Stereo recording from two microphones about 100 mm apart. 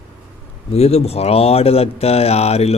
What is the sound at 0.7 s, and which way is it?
Speech, 90° left.